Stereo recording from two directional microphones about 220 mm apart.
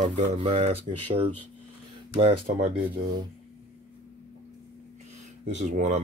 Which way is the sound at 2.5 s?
40° right (ahead or behind).